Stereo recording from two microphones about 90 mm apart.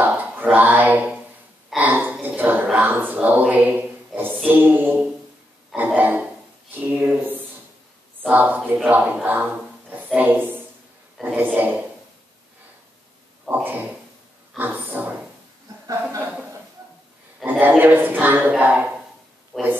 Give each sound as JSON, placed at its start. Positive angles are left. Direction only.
{"t": 0.4, "sound": "speech", "side_deg": -20}
{"t": 1.8, "sound": "a sound", "side_deg": -20}
{"t": 2.2, "sound": "speech", "side_deg": -20}
{"t": 13.5, "sound": "speech", "side_deg": -20}
{"t": 15.9, "sound": "a woman's voice", "side_deg": -35}
{"t": 17.5, "sound": "speech", "side_deg": -20}
{"t": 19.5, "sound": "speech", "side_deg": 5}